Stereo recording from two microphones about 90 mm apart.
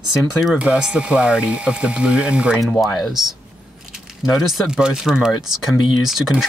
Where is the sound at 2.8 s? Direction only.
Centre (ahead or behind).